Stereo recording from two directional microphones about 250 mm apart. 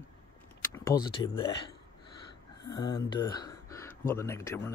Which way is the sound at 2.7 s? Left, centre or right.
Centre.